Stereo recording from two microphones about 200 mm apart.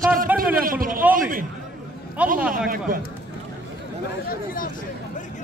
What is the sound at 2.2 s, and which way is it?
Speech, 5° right (ahead or behind).